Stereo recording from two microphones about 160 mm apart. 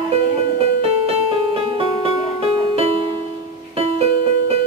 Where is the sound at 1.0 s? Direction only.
35° right (ahead or behind).